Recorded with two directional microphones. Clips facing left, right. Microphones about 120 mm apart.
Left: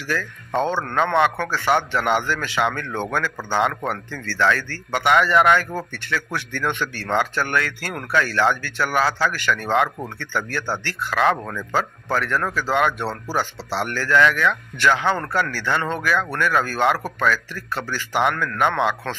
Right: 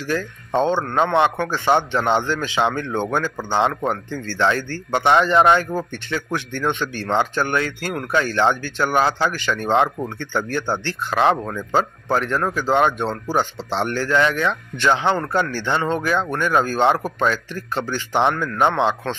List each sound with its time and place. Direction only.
0.1 s a man's voice: 20° right (ahead or behind)